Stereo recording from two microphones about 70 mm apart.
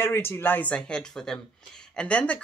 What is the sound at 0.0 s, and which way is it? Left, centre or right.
Speech, left.